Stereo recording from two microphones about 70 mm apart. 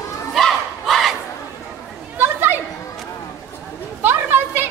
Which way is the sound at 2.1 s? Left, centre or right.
Right.